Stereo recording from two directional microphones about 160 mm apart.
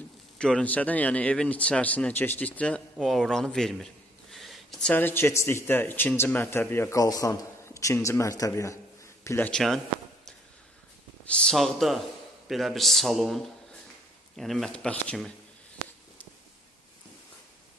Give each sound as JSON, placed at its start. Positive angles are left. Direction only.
{"t": 0.4, "sound": "speech", "side_deg": 5}
{"t": 9.5, "sound": "a man's voice", "side_deg": 0}
{"t": 11.2, "sound": "a man's voice", "side_deg": 5}